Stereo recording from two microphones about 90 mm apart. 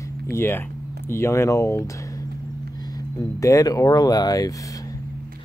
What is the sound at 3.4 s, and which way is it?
Speech, 40° left (ahead or behind).